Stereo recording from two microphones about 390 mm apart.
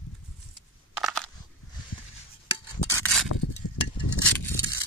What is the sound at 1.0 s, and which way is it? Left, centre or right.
Crushing, centre.